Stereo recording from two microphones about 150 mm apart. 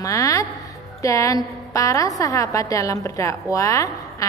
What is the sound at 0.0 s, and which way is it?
A woman's voice, 20° left (ahead or behind).